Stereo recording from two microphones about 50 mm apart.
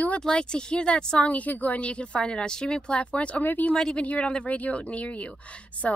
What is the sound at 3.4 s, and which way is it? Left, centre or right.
Speech, left.